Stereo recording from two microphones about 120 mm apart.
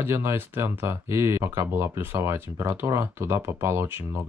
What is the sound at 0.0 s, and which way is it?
Speech, 20° right (ahead or behind).